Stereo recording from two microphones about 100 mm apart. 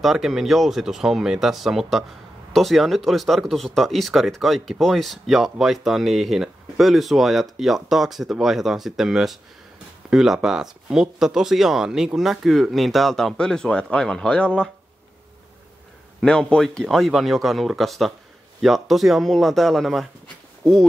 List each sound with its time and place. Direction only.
0.0 s speech: 5° right (ahead or behind)
16.2 s speech: 10° left (ahead or behind)